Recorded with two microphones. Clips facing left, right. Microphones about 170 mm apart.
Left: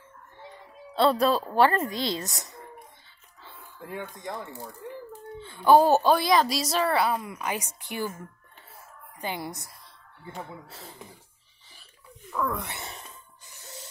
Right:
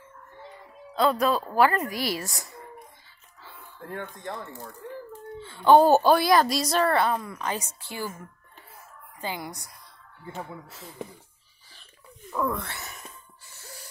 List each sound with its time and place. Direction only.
0.9 s speech: 30° left (ahead or behind)
3.8 s speech: 10° left (ahead or behind)
9.2 s speech: 20° left (ahead or behind)
12.3 s speech: 10° right (ahead or behind)
12.5 s speech: 20° left (ahead or behind)
13.5 s a sound: 20° left (ahead or behind)